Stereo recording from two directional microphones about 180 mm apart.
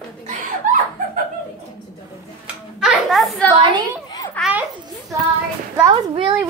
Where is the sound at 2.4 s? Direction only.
Centre (ahead or behind).